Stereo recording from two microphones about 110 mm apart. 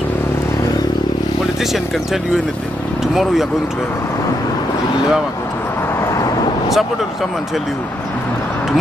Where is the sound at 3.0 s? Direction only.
5° right (ahead or behind).